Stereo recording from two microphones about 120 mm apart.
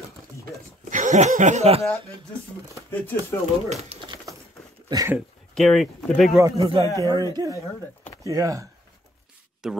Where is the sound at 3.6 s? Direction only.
65° right (ahead or behind).